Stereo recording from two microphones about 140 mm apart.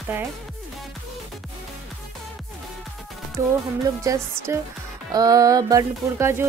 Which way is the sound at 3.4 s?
20° right (ahead or behind).